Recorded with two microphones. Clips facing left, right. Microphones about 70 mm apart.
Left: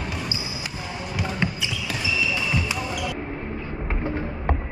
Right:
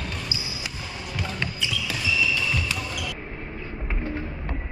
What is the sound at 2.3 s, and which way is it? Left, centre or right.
Basketball bounce, centre.